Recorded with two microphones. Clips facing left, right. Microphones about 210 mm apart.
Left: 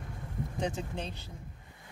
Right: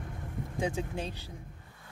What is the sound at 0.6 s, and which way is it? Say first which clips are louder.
Speech: right 2 dB; 10° right (ahead or behind).